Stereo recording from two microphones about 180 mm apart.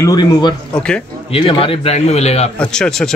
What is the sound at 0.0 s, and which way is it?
Speech, 25° left (ahead or behind).